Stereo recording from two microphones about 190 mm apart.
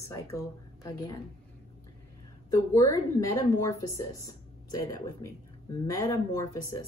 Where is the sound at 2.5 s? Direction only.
20° left (ahead or behind).